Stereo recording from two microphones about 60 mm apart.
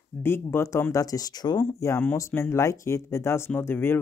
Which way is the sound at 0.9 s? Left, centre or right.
Left.